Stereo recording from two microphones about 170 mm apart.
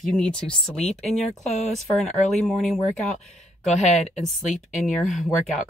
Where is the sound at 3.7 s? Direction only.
40° left (ahead or behind).